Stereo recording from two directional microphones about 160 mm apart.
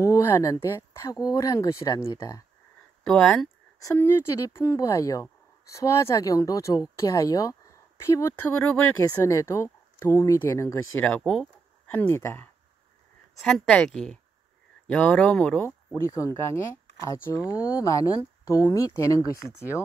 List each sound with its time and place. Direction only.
0.0 s speech: 20° left (ahead or behind)
3.1 s a woman's voice: 5° left (ahead or behind)
3.8 s speech: 15° left (ahead or behind)
8.5 s speech: 10° left (ahead or behind)
9.2 s speech: 20° left (ahead or behind)
11.1 s a woman's voice: 5° left (ahead or behind)
11.9 s speech: 15° left (ahead or behind)
13.4 s a woman's voice: 5° left (ahead or behind); by 19.4 s 20° left (ahead or behind)